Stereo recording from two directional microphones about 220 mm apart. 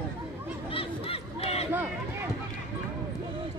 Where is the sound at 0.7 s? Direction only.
25° left (ahead or behind).